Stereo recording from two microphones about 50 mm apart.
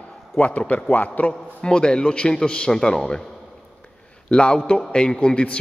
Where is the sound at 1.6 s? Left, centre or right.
Centre.